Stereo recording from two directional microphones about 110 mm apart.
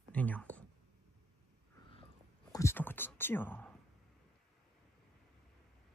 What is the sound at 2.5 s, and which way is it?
Whispering, 20° left (ahead or behind).